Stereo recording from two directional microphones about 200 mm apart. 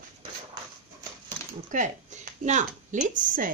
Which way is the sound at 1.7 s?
40° right (ahead or behind).